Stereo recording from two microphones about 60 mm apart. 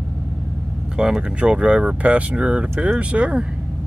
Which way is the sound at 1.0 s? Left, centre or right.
Centre.